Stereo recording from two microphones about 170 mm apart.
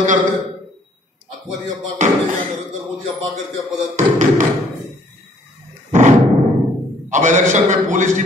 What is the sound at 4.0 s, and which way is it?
Speech, 45° right (ahead or behind).